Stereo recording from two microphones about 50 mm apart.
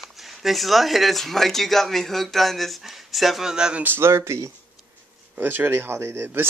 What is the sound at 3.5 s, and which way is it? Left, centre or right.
Speech, centre.